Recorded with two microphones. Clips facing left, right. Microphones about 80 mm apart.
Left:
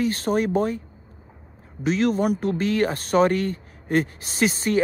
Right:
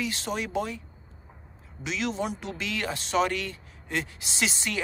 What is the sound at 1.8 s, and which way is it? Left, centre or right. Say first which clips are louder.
Speech: left 9 dB; left.